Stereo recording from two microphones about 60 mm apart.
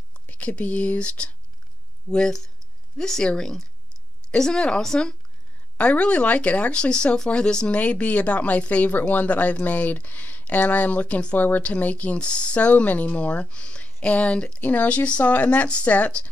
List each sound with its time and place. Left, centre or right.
0.1 s a woman's voice: left